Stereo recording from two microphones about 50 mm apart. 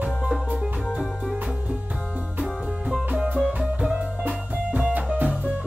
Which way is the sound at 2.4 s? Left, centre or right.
Centre.